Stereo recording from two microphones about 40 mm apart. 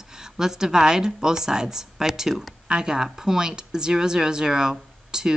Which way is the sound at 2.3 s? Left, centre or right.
Centre.